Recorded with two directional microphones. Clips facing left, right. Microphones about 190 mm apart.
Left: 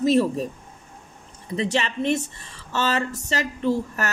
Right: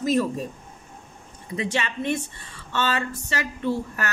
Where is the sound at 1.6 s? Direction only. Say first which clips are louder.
Left 3 dB; 40° left (ahead or behind).